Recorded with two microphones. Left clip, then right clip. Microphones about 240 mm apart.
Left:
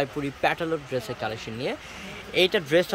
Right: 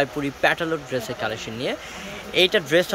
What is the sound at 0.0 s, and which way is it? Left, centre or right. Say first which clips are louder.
Speech: right 4 dB; centre.